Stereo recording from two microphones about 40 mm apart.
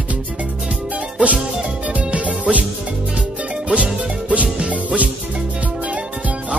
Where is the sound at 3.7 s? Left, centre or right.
Right.